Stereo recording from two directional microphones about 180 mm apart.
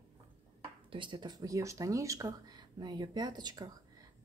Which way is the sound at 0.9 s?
25° right (ahead or behind).